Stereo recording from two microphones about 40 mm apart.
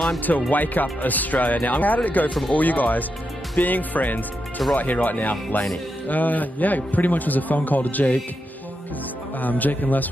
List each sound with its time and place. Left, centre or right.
0.2 s a man's voice: left
9.4 s a man's voice: left